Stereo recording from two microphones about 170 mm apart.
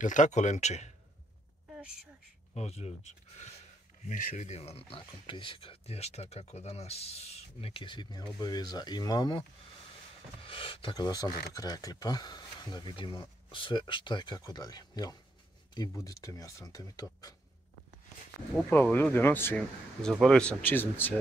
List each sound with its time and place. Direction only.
0.0 s speech: 45° left (ahead or behind)
2.5 s speech: 40° left (ahead or behind)
10.4 s speech: 30° left (ahead or behind)
18.7 s speech: 10° left (ahead or behind)